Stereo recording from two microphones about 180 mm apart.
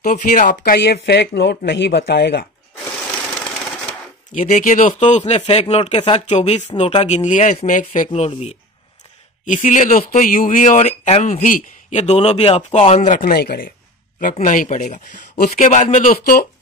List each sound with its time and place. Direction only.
0.0 s speech: 45° left (ahead or behind)
0.7 s speech: 70° left (ahead or behind)
4.3 s speech: 45° left (ahead or behind)
14.2 s speech: 50° left (ahead or behind)